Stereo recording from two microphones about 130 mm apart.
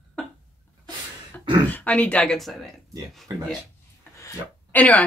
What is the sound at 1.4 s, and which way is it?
Throat clearing, 40° right (ahead or behind).